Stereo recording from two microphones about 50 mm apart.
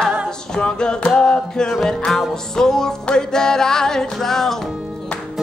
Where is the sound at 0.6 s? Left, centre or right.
Centre.